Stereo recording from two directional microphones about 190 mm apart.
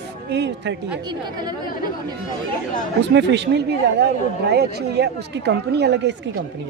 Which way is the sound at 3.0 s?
65° right (ahead or behind).